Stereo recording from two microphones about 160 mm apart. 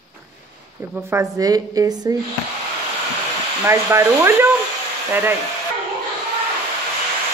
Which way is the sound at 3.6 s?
15° right (ahead or behind).